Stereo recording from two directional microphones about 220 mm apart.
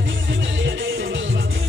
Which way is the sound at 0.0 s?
55° right (ahead or behind).